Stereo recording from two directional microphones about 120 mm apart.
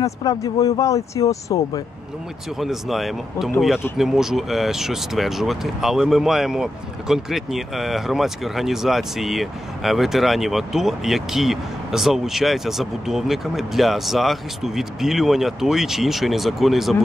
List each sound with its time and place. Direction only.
0.0 s speech: 30° left (ahead or behind)
2.6 s speech: centre (ahead or behind)